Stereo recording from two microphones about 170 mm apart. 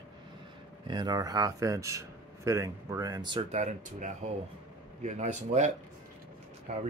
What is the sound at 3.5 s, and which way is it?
Speech, 45° right (ahead or behind).